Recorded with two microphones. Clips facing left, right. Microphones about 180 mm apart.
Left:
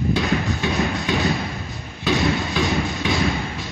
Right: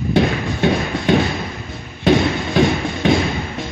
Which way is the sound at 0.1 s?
60° right (ahead or behind).